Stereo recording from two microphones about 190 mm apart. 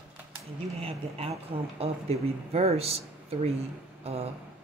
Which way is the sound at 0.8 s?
30° right (ahead or behind).